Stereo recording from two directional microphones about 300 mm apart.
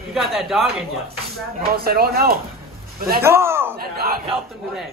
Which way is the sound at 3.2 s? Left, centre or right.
Centre.